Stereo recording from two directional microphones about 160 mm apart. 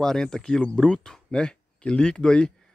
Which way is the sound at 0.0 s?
5° left (ahead or behind).